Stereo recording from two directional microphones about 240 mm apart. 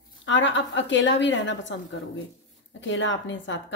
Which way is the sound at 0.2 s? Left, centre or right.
Left.